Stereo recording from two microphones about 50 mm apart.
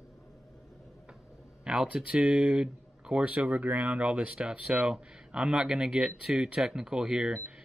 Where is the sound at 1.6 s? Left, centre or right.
Centre.